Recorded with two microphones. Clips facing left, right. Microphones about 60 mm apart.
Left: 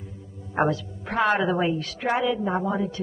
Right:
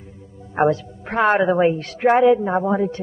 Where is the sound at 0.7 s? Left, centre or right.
Right.